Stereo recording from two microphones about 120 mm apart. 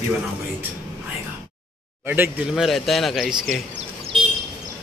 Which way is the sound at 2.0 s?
20° right (ahead or behind).